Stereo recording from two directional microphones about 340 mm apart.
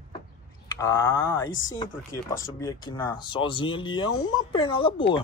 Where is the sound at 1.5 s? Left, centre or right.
Left.